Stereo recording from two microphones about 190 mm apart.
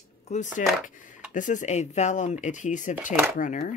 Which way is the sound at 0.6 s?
40° left (ahead or behind).